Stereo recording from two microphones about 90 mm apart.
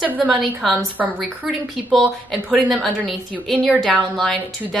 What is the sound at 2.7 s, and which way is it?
A woman's voice, centre (ahead or behind).